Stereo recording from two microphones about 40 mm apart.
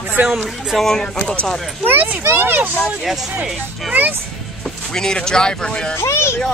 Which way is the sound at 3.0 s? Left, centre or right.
Centre.